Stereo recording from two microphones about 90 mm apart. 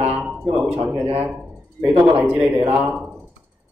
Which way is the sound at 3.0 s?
10° right (ahead or behind).